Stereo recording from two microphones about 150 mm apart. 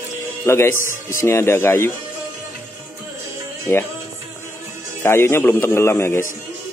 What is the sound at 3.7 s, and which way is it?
Speech, 15° left (ahead or behind).